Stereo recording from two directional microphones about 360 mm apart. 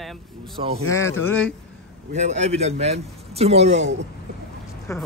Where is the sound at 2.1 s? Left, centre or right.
Centre.